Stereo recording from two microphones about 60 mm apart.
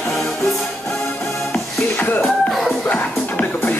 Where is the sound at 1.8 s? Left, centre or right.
Left.